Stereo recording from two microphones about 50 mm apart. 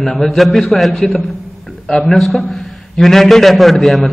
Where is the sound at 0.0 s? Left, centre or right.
Centre.